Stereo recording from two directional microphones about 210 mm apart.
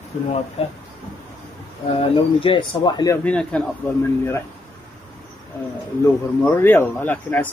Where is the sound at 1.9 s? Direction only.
25° left (ahead or behind).